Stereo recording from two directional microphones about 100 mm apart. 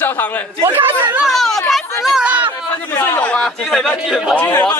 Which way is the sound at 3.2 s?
10° left (ahead or behind).